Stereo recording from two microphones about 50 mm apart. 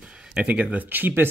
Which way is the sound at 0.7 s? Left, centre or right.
Right.